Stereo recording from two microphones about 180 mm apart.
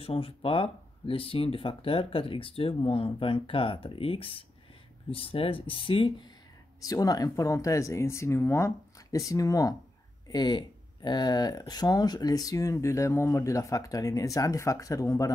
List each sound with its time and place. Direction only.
0.0 s speech: 30° left (ahead or behind)